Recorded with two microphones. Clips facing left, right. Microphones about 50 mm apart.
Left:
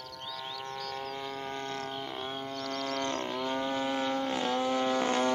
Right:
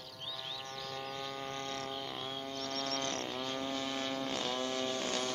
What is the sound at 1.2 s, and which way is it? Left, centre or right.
Music, centre.